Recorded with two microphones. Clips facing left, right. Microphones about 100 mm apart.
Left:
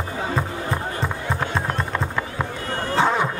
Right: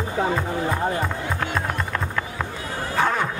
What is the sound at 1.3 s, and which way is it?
Music, 20° left (ahead or behind).